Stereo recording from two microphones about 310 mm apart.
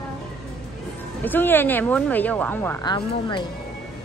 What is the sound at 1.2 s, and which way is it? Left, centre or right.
Speech, centre.